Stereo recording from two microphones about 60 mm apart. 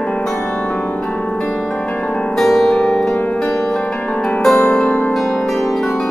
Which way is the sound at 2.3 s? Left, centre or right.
Centre.